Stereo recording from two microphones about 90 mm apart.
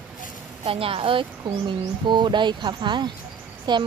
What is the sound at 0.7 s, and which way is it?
Speech, 90° right.